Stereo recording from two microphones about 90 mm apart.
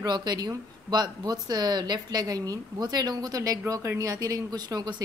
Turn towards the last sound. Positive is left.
turn(degrees=-50)  # may be behind; listen again after turning